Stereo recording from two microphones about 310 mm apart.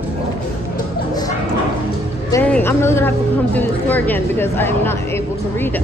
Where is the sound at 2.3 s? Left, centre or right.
Centre.